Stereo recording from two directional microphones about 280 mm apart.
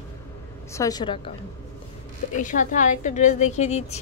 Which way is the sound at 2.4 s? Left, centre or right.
Left.